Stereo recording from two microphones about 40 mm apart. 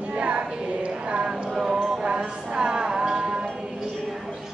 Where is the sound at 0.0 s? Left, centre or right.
Right.